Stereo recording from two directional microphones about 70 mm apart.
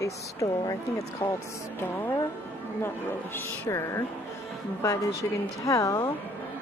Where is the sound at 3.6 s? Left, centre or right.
Left.